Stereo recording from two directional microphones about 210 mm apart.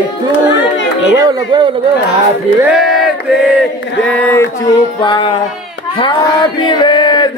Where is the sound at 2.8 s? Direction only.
Centre (ahead or behind).